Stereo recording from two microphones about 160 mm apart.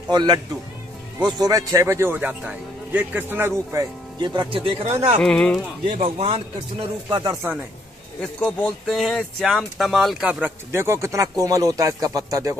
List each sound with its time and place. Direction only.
0.1 s a man's voice: 25° right (ahead or behind)
4.2 s speech: 25° right (ahead or behind)
5.2 s speech: 5° left (ahead or behind)
6.0 s speech: 35° right (ahead or behind)
8.2 s speech: 5° left (ahead or behind)
10.4 s speech: 15° right (ahead or behind)